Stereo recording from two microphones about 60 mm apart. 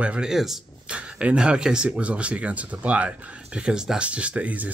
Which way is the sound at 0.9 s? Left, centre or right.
Centre.